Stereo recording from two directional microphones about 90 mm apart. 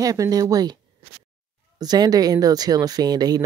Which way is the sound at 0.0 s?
40° right (ahead or behind).